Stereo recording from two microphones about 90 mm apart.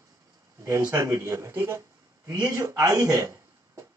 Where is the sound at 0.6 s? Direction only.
35° right (ahead or behind).